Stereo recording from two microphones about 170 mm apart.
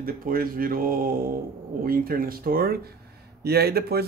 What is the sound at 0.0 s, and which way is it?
Speech, 60° right (ahead or behind).